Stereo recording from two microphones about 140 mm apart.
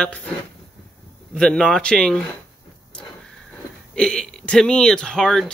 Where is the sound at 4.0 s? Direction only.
5° left (ahead or behind).